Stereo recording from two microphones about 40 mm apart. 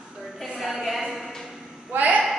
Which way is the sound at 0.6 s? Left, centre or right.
Centre.